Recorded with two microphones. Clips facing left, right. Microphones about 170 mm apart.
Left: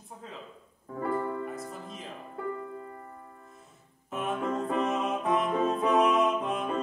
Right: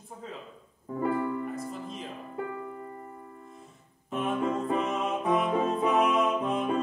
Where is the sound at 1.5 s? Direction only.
Centre (ahead or behind).